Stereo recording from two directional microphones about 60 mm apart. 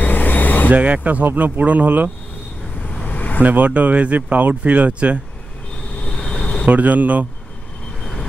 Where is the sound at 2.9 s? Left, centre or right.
Left.